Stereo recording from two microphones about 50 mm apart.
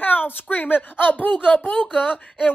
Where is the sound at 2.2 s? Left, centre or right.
Left.